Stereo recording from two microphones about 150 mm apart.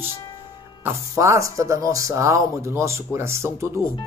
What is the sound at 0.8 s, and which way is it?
Speech, 20° right (ahead or behind).